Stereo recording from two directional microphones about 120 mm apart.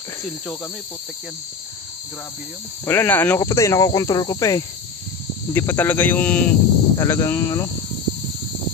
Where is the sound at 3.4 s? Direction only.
25° left (ahead or behind).